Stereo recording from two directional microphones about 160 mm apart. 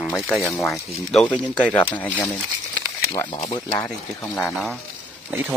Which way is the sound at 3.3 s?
30° left (ahead or behind).